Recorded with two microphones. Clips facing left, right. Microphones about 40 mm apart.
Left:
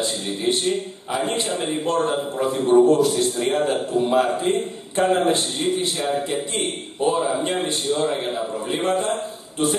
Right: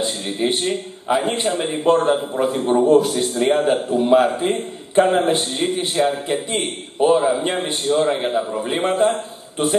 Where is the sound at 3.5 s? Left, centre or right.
Right.